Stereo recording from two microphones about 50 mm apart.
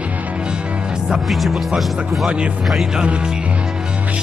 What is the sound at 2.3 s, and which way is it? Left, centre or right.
Speech, right.